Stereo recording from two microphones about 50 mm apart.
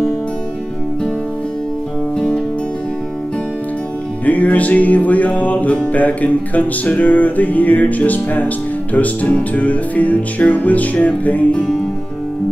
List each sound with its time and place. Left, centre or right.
2.1 s music: centre
4.3 s music: left